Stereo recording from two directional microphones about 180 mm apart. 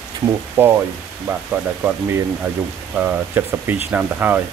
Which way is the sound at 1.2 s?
10° right (ahead or behind).